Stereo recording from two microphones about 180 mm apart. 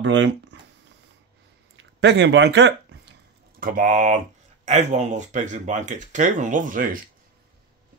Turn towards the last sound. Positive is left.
turn(degrees=-50)  # may be behind; listen again after turning